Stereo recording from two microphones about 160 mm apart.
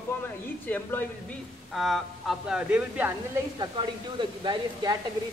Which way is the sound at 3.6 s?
30° right (ahead or behind).